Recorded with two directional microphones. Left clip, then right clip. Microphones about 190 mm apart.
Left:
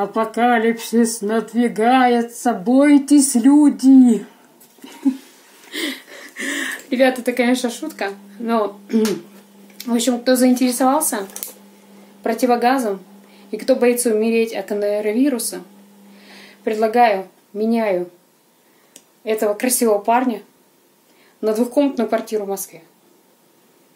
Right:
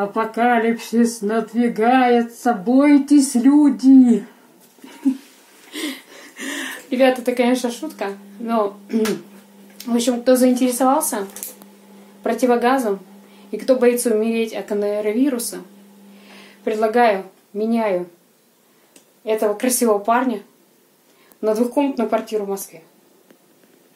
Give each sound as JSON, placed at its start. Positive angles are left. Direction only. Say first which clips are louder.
{"t": 0.0, "sound": "speech", "louder": "left 1 dB", "side_deg": 15}
{"t": 5.7, "sound": "a sound", "louder": "left 3 dB", "side_deg": 20}
{"t": 9.8, "sound": "speech", "louder": "even", "side_deg": 10}
{"t": 16.3, "sound": "a sound", "louder": "left 1 dB", "side_deg": 10}
{"t": 17.6, "sound": "speech", "louder": "left 1 dB", "side_deg": 10}
{"t": 19.2, "sound": "speech", "louder": "even", "side_deg": 10}